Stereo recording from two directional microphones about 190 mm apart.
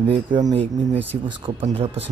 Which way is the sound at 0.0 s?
25° right (ahead or behind).